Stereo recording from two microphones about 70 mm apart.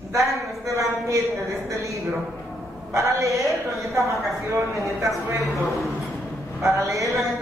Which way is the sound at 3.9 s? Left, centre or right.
Right.